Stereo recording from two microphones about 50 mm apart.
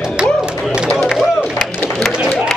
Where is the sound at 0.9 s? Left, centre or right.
Left.